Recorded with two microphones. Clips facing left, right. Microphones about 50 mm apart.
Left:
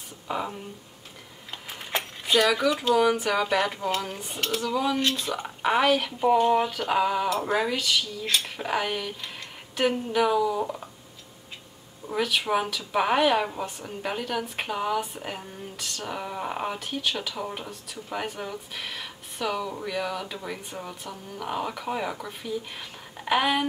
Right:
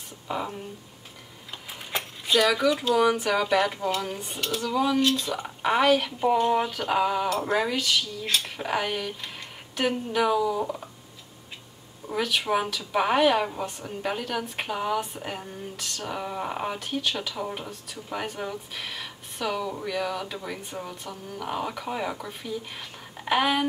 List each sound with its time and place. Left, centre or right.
0.3 s speech: centre
1.9 s a sound: centre
2.3 s speech: centre
12.1 s speech: centre